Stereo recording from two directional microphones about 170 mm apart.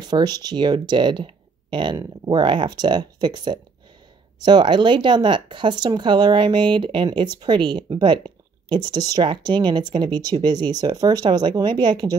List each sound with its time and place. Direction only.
0.0 s speech: 25° right (ahead or behind)